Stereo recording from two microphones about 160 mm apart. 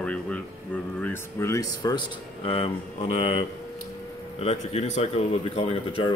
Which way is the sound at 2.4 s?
35° left (ahead or behind).